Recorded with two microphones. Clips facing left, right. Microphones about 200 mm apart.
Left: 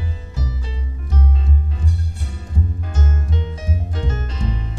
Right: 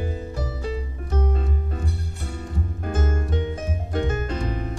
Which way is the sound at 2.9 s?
50° right (ahead or behind).